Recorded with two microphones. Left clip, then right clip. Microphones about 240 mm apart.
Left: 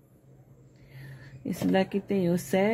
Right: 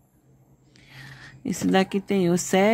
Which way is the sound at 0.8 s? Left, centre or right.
Right.